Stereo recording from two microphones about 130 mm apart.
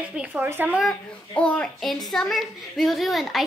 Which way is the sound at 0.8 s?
5° left (ahead or behind).